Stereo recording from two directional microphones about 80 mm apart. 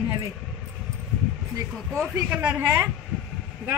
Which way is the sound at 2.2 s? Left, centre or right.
Centre.